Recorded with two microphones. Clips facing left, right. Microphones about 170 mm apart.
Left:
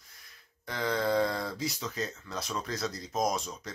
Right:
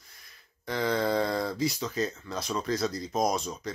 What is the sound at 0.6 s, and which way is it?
Speech, centre (ahead or behind).